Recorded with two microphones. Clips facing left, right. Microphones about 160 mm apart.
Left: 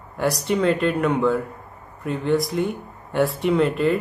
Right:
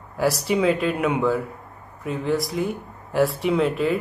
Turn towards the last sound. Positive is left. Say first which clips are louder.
# left 2 dB
turn(degrees=0)  # may be behind; listen again after turning